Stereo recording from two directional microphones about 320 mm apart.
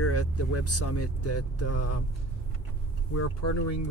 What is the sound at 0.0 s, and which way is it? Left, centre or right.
Speech, left.